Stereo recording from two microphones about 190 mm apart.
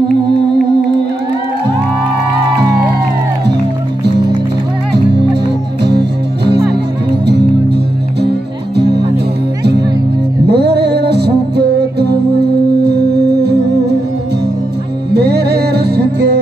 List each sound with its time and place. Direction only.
4.9 s music: 60° right (ahead or behind)
8.7 s music: 60° right (ahead or behind)
10.4 s music: 60° right (ahead or behind)
15.1 s music: 60° right (ahead or behind)